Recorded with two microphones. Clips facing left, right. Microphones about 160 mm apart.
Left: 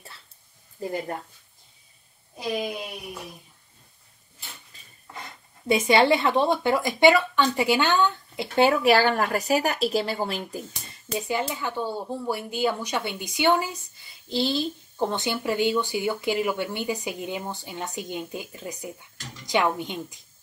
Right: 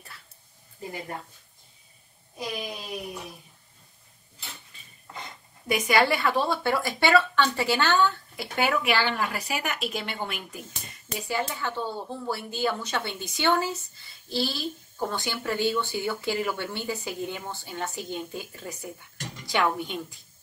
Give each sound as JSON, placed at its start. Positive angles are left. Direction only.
{"t": 4.7, "sound": "dishes", "side_deg": 40}
{"t": 5.7, "sound": "speech", "side_deg": 25}
{"t": 11.2, "sound": "speech", "side_deg": 15}